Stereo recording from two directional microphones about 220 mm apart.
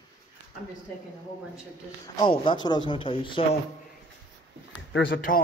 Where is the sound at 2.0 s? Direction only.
20° left (ahead or behind).